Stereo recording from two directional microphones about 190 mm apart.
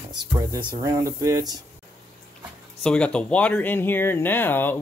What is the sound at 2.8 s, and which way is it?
Speech, 5° left (ahead or behind).